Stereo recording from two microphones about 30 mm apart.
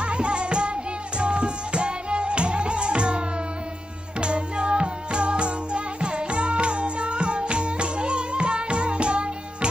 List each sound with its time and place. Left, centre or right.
0.0 s music: right
4.2 s music: right